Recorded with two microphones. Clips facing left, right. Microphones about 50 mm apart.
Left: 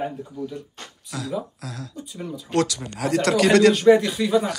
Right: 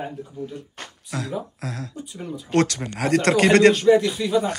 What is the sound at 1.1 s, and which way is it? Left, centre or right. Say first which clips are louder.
Speech: even; right.